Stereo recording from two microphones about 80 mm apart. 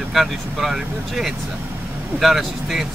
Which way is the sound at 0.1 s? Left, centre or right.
Centre.